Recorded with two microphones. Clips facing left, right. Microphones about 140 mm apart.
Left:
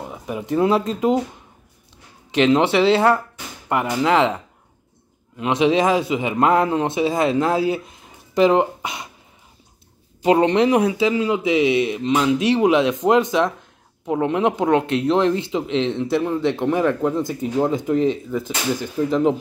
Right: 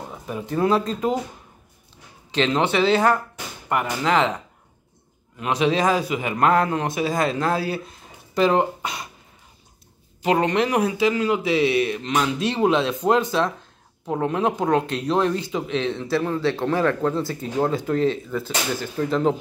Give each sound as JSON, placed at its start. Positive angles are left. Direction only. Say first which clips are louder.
{"t": 0.0, "sound": "speech", "louder": "left 3 dB", "side_deg": 15}
{"t": 2.3, "sound": "speech", "louder": "left 5 dB", "side_deg": 20}
{"t": 5.4, "sound": "a man's voice", "louder": "left 3 dB", "side_deg": 25}
{"t": 10.2, "sound": "speech", "louder": "left 5 dB", "side_deg": 30}